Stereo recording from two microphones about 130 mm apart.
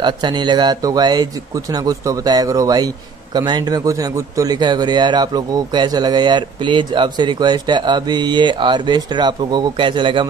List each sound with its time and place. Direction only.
0.0 s speech: 35° right (ahead or behind)